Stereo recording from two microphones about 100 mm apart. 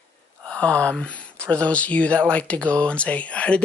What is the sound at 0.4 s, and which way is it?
Speech, 10° left (ahead or behind).